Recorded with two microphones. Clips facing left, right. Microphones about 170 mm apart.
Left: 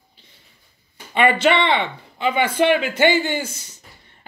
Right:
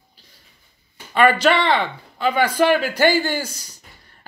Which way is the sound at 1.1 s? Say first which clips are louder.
Right 1 dB; 20° left (ahead or behind).